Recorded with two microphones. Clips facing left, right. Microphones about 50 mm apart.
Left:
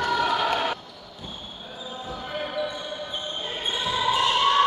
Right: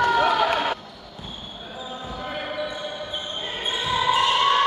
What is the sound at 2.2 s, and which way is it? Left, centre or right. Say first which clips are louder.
Basketball bounce: even; centre.